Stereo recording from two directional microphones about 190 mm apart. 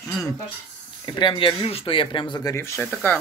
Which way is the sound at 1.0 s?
25° left (ahead or behind).